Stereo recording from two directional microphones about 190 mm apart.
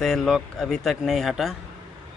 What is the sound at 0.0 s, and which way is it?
Speech, centre (ahead or behind).